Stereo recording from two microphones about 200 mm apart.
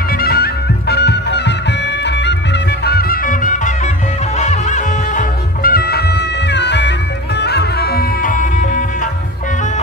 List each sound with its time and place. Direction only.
0.2 s music: 50° left (ahead or behind)